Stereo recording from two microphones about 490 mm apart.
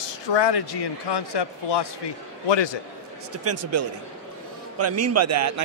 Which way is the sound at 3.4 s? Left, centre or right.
Right.